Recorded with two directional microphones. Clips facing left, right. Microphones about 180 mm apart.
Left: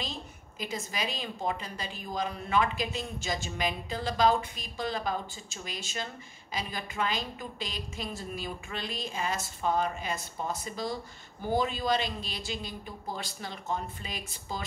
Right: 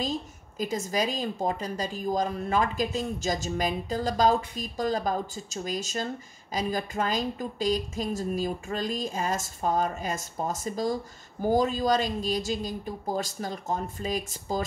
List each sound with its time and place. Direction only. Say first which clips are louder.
0.0 s a woman's voice: right 8 dB; 40° right (ahead or behind)